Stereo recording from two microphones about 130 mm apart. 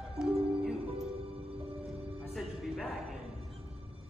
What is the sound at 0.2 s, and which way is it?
Music, 5° right (ahead or behind).